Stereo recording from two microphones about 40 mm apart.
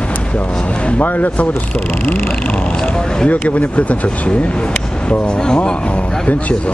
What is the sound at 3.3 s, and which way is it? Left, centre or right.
Speech, left.